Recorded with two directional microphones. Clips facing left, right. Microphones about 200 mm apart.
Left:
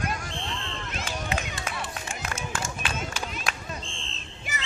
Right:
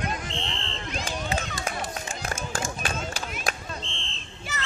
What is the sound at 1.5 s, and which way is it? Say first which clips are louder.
Run: right 3 dB; 40° right (ahead or behind).